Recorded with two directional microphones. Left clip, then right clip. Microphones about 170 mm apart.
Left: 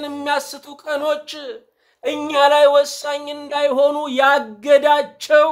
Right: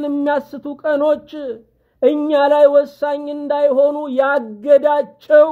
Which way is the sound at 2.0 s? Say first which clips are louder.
Right 2 dB; 25° right (ahead or behind).